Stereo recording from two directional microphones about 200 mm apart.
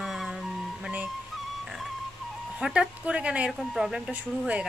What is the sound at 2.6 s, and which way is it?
Speech, 5° right (ahead or behind).